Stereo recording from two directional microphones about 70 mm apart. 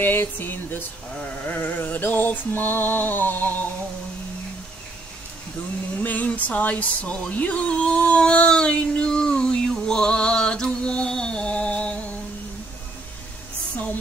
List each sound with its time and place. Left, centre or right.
0.0 s music: left
1.1 s music: centre
5.9 s music: left